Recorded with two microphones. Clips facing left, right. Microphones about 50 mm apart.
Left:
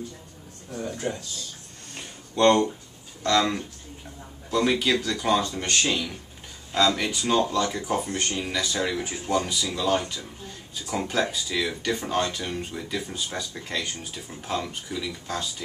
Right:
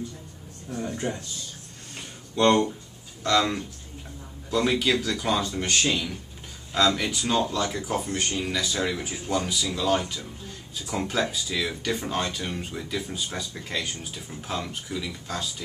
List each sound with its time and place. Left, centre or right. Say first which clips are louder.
0.8 s speech: even; right
2.0 s a sound: left 1 dB; centre
3.3 s speech: even; centre